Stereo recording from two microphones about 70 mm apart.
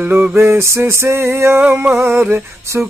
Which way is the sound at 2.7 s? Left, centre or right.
Right.